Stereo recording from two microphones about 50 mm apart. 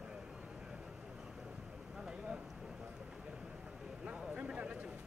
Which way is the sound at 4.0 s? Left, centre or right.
Right.